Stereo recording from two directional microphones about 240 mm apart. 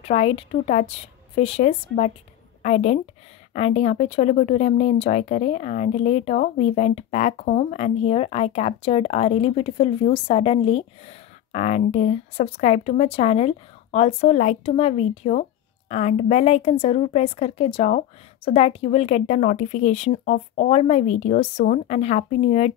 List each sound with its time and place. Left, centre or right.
0.0 s speech: left